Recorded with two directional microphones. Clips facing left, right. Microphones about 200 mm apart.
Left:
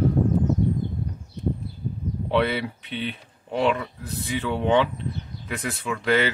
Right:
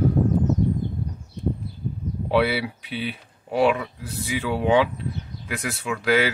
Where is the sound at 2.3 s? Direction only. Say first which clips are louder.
Right 2 dB; 10° right (ahead or behind).